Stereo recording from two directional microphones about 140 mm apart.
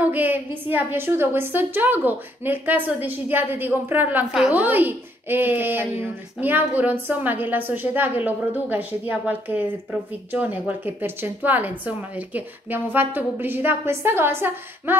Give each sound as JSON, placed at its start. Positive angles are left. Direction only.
{"t": 0.0, "sound": "a woman's voice", "side_deg": -10}